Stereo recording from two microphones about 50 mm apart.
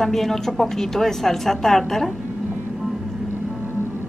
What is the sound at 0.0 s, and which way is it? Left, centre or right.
A woman's voice, centre.